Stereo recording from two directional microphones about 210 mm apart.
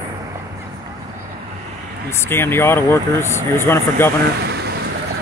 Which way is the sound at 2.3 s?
10° left (ahead or behind).